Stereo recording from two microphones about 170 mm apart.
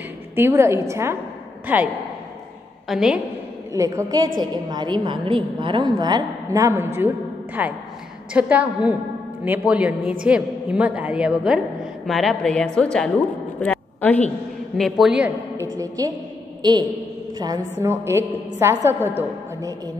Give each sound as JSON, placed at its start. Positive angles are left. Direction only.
{"t": 0.4, "sound": "a woman's voice", "side_deg": -15}
{"t": 2.9, "sound": "a woman's voice", "side_deg": -5}
{"t": 3.7, "sound": "a woman's voice", "side_deg": -20}
{"t": 13.6, "sound": "a sound", "side_deg": 10}
{"t": 14.8, "sound": "a woman's voice", "side_deg": 0}
{"t": 16.0, "sound": "a woman's voice", "side_deg": -20}
{"t": 17.7, "sound": "a woman's voice", "side_deg": -15}